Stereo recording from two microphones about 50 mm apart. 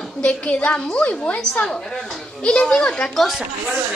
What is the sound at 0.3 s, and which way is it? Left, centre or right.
A woman's voice, left.